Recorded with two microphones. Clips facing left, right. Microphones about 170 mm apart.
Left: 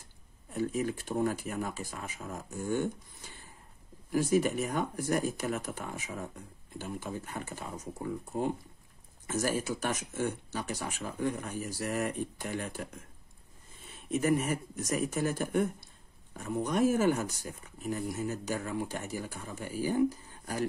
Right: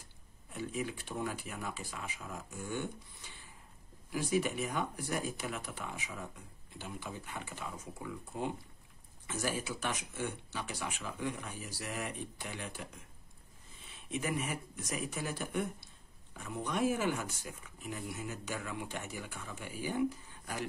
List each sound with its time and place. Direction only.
0.5 s speech: 45° left (ahead or behind)